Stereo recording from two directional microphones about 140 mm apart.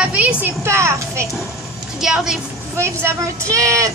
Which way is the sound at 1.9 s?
5° right (ahead or behind).